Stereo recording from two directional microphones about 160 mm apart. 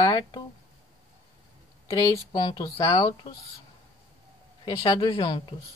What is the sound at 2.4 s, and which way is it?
Speech, 30° left (ahead or behind).